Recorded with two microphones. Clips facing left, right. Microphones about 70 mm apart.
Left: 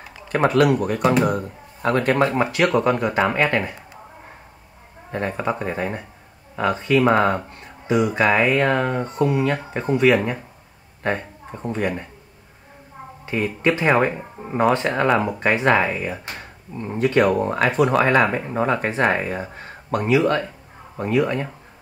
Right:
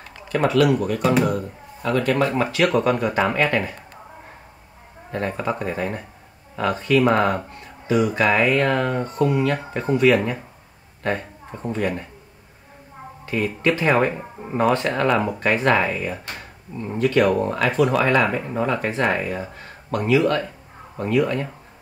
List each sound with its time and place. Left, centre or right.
0.5 s a man's voice: left
2.3 s speech: centre
5.1 s speech: centre
13.2 s speech: centre
17.0 s speech: left
20.0 s speech: centre